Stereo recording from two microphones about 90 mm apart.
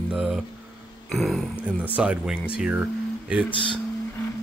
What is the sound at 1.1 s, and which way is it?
Speech, centre (ahead or behind).